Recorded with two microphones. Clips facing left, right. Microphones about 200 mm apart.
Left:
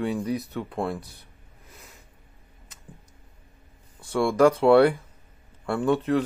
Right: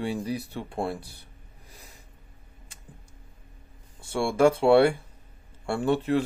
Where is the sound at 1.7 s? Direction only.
35° right (ahead or behind).